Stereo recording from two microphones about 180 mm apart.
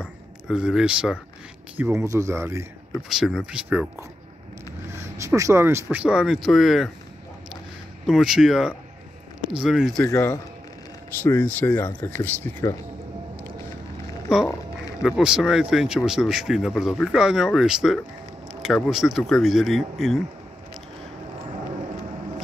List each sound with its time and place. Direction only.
0.0 s speech: 5° right (ahead or behind)
3.1 s speech: centre (ahead or behind)
5.1 s speech: 15° right (ahead or behind); by 6.9 s centre (ahead or behind)
8.1 s speech: 5° right (ahead or behind)
10.1 s speech: 20° left (ahead or behind)
15.0 s speech: 5° right (ahead or behind)
18.5 s a sound: 5° right (ahead or behind)
18.8 s speech: centre (ahead or behind)